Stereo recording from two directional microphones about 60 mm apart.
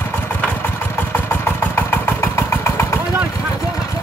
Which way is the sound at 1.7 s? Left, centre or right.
Left.